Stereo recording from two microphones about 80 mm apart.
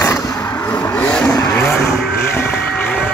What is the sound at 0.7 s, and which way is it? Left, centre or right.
Vehicle, left.